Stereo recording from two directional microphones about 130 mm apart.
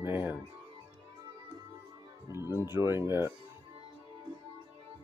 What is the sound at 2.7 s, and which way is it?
Speech, 20° right (ahead or behind).